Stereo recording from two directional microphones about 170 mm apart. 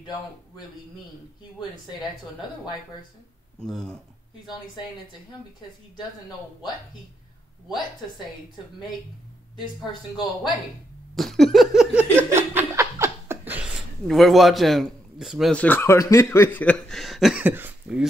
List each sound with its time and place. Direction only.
3.6 s speech: 5° left (ahead or behind)
11.1 s a sound: centre (ahead or behind)
12.5 s speech: 15° right (ahead or behind)